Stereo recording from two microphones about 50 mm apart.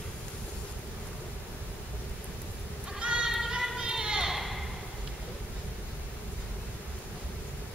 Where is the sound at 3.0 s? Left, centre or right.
Centre.